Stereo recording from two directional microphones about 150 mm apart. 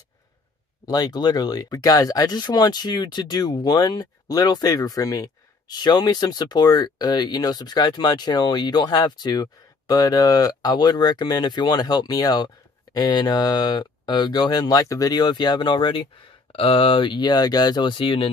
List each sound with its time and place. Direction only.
0.8 s speech: 25° left (ahead or behind)